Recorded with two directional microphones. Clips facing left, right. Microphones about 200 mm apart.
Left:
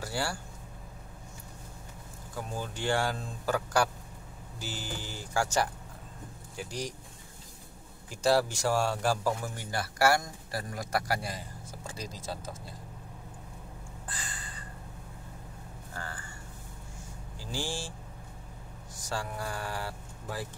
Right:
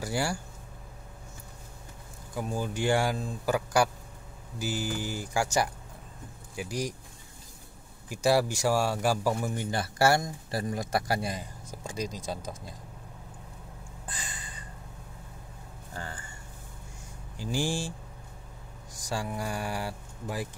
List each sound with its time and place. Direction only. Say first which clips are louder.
0.0 s speech: right 4 dB; 15° right (ahead or behind)
2.3 s speech: right 5 dB; 10° right (ahead or behind)
8.1 s speech: right 1 dB; 10° right (ahead or behind)
9.7 s a man's voice: right 1 dB; 25° right (ahead or behind)
14.0 s a sound: right 1 dB; 20° right (ahead or behind)
17.4 s speech: right 6 dB; 15° right (ahead or behind)
18.9 s speech: right 3 dB; 15° right (ahead or behind)